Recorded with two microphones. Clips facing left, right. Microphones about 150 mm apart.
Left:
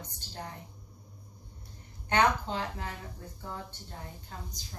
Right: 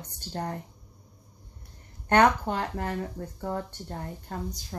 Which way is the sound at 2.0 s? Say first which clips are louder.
Right 6 dB; 60° right (ahead or behind).